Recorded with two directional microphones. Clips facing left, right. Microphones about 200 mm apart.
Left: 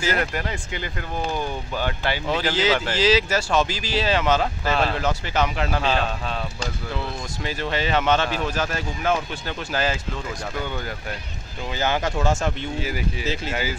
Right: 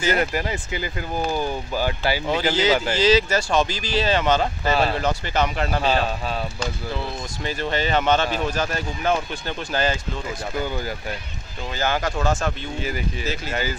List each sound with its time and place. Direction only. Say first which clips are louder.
0.1 s speech: right 5 dB; 5° right (ahead or behind)
11.7 s speech: even; 20° left (ahead or behind)
13.5 s speech: right 1 dB; 10° left (ahead or behind)